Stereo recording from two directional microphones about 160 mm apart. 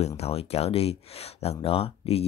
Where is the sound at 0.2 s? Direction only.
40° left (ahead or behind).